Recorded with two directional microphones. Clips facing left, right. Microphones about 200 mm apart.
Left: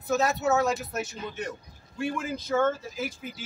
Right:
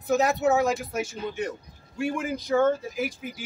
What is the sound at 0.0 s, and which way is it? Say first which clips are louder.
Speech: right 3 dB; 15° right (ahead or behind).